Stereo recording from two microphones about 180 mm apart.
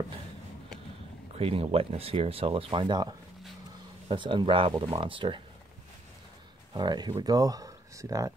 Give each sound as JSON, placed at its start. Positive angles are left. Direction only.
{"t": 1.3, "sound": "speech", "side_deg": -30}
{"t": 6.7, "sound": "speech", "side_deg": -25}